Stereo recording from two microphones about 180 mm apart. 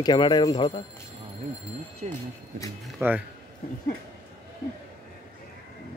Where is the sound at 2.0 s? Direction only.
40° right (ahead or behind).